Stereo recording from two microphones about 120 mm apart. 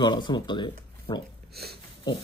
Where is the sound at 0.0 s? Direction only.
40° left (ahead or behind).